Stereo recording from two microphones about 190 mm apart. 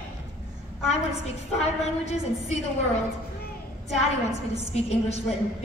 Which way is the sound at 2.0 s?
35° left (ahead or behind).